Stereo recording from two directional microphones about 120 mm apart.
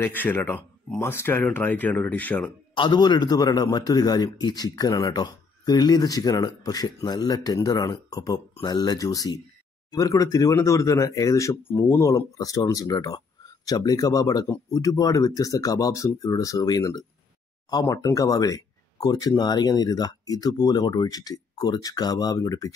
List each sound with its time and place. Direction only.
0.0 s speech: 15° left (ahead or behind)
2.7 s a man's voice: 40° left (ahead or behind)